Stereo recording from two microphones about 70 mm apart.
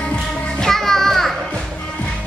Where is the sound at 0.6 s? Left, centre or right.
Centre.